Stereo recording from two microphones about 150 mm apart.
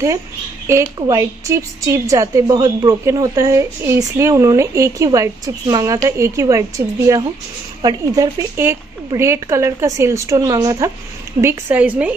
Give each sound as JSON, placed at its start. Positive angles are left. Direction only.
{"t": 0.7, "sound": "a woman's voice", "side_deg": -25}
{"t": 11.4, "sound": "a woman's voice", "side_deg": -10}